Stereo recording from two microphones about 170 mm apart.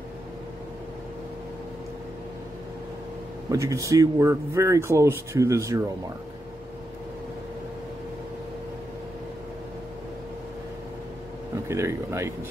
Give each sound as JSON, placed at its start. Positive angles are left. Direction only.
{"t": 3.4, "sound": "speech", "side_deg": -15}
{"t": 11.6, "sound": "speech", "side_deg": -15}